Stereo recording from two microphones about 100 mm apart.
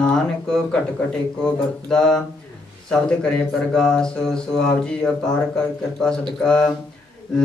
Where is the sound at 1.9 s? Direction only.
5° left (ahead or behind).